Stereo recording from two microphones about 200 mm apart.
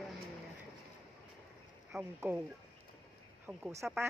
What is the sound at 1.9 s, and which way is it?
Speech, 10° right (ahead or behind).